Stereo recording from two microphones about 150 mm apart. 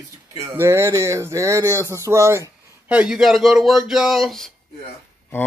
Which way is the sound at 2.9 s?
5° right (ahead or behind).